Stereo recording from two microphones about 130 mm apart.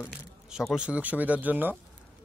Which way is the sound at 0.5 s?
5° right (ahead or behind).